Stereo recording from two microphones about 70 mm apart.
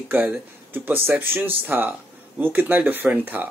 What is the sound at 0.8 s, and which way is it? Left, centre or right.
Speech, right.